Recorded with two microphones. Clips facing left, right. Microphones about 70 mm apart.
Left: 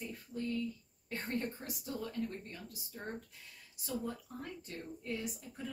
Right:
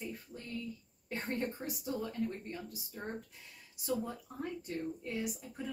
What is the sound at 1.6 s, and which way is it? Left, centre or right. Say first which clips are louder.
Speech: right 3 dB; centre.